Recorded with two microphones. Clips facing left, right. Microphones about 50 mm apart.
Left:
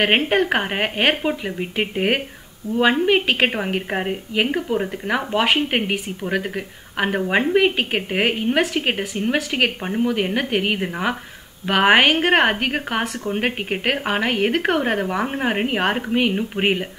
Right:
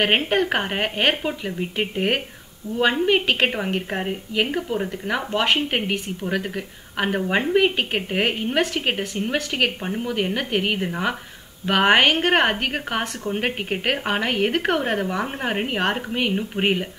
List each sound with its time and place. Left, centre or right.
0.0 s a woman's voice: centre